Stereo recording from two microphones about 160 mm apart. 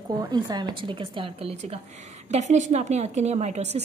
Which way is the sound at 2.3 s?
50° right (ahead or behind).